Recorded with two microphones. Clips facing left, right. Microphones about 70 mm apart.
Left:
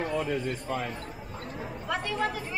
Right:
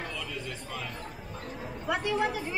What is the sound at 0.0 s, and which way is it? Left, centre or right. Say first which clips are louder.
Speech: left 8 dB; left.